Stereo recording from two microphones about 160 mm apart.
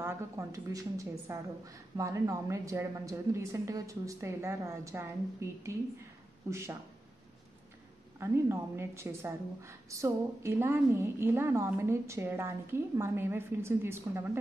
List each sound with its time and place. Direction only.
0.0 s a woman's voice: 20° right (ahead or behind)
8.2 s a woman's voice: 15° right (ahead or behind)